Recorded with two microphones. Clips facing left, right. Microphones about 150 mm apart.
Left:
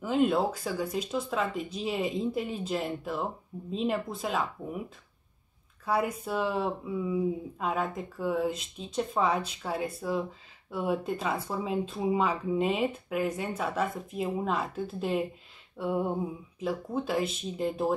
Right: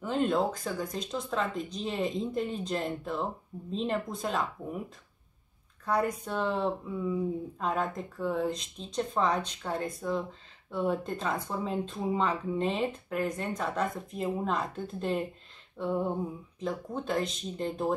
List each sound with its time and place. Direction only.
0.0 s speech: 5° left (ahead or behind)